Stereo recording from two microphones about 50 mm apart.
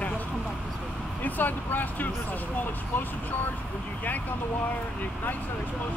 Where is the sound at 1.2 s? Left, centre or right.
Left.